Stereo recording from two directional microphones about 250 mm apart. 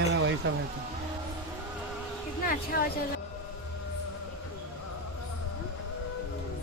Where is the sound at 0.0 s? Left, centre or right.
Right.